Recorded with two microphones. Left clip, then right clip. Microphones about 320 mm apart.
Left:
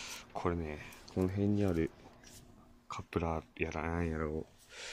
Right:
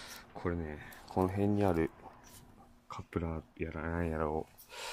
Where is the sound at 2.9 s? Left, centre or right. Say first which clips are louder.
Left 3 dB; centre.